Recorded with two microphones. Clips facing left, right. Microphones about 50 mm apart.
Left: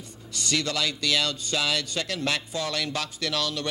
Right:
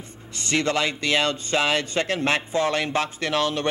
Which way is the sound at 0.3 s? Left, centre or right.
Right.